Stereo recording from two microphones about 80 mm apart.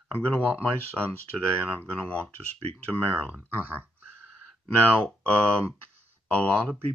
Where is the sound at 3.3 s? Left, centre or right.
Right.